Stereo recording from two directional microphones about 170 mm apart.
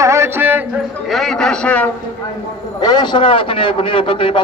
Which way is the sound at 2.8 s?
25° left (ahead or behind).